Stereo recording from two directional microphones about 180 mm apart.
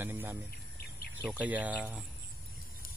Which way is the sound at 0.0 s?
10° right (ahead or behind).